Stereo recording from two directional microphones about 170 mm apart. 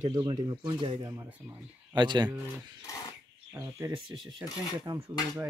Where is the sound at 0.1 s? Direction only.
25° right (ahead or behind).